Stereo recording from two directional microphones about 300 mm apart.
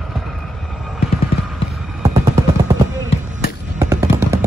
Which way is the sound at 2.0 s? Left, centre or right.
Centre.